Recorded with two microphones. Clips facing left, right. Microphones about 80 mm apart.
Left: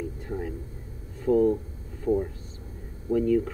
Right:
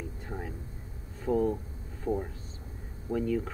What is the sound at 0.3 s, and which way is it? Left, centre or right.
Speech, centre.